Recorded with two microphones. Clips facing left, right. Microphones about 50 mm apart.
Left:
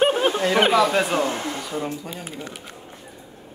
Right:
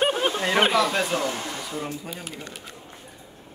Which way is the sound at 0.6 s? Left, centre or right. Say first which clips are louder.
Left 3 dB; centre.